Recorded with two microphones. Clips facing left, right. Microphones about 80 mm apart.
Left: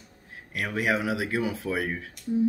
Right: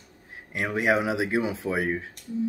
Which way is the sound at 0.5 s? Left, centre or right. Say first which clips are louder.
Right 3 dB; right.